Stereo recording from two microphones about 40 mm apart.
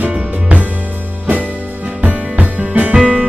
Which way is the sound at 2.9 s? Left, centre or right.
Centre.